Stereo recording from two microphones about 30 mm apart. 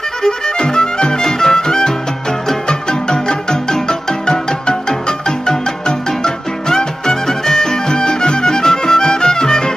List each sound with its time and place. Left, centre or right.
0.2 s music: left
2.9 s music: left